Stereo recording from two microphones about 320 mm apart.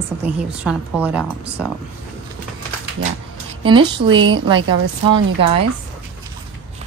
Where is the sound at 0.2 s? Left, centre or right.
Centre.